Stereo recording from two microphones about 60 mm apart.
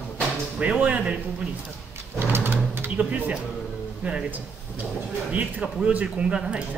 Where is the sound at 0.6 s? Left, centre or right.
Right.